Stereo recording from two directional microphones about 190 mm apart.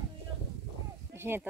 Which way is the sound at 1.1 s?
10° right (ahead or behind).